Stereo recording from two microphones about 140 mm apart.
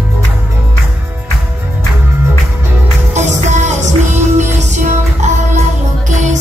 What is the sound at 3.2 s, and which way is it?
Music, 60° right (ahead or behind).